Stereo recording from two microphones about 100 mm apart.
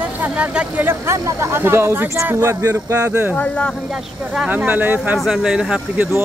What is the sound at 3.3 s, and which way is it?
Speech, 10° left (ahead or behind).